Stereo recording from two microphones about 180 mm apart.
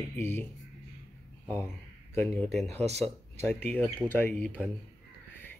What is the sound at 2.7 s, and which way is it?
Speech, 35° right (ahead or behind).